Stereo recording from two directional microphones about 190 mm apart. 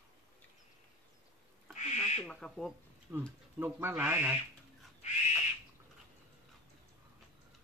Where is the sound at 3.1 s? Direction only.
15° right (ahead or behind).